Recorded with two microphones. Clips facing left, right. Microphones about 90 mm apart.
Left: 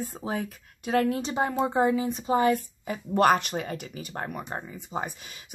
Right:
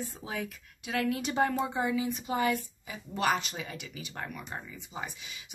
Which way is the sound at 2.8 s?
50° left (ahead or behind).